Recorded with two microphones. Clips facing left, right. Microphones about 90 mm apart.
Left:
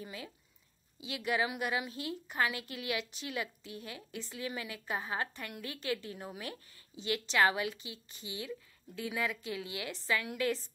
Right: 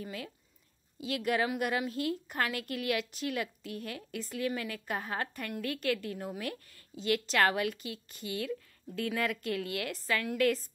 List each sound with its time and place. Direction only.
0.0 s a woman's voice: 55° right (ahead or behind)